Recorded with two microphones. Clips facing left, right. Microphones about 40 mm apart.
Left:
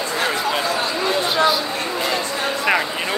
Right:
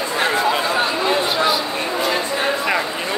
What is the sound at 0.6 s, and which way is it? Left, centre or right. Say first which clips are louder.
Speech: right 2 dB; right.